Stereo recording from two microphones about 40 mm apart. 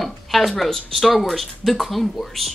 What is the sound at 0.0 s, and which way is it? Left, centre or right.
Speech, centre.